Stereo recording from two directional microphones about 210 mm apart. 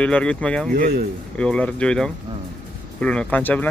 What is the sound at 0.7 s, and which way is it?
Speech, 40° right (ahead or behind).